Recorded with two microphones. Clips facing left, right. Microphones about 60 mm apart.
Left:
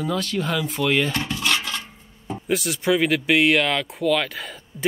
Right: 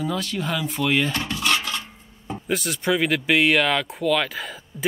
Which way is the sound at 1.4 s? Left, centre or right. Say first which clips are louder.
Right 2 dB; centre.